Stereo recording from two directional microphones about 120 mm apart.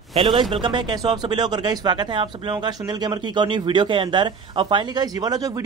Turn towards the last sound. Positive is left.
turn(degrees=-30)  # may be behind; listen again after turning